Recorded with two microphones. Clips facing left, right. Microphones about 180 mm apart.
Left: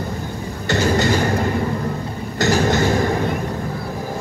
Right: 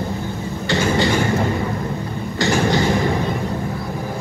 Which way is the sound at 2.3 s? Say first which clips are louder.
Left 1 dB; 45° left (ahead or behind).